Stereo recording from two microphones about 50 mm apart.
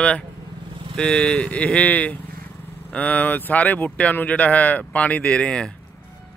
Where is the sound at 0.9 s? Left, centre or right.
Centre.